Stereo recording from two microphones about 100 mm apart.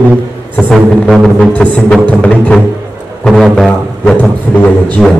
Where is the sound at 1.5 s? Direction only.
15° left (ahead or behind).